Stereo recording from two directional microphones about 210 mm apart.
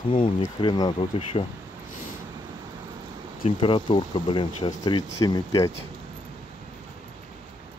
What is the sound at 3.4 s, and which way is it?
Speech, 25° left (ahead or behind).